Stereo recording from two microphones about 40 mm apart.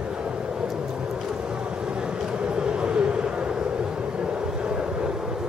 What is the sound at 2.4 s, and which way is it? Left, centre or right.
Vehicle, right.